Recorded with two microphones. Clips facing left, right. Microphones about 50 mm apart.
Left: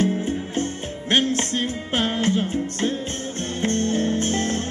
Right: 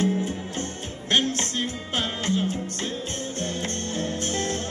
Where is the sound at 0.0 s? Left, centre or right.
Left.